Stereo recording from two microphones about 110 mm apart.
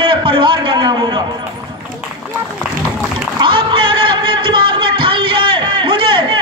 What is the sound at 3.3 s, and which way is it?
Music, 50° right (ahead or behind).